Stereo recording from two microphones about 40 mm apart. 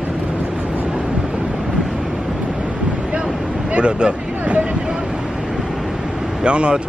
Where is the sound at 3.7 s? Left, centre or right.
Right.